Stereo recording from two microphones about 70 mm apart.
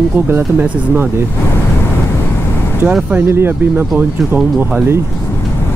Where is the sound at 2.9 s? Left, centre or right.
Centre.